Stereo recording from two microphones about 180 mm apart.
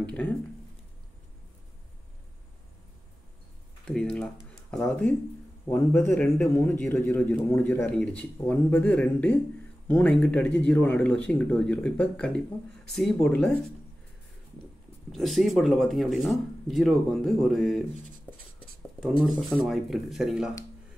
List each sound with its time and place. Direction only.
0.0 s a man's voice: 5° left (ahead or behind)
3.8 s a man's voice: 5° left (ahead or behind)
15.0 s speech: centre (ahead or behind)
18.9 s speech: centre (ahead or behind)